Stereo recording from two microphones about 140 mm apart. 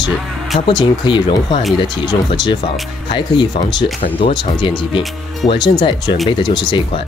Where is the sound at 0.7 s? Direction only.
35° left (ahead or behind).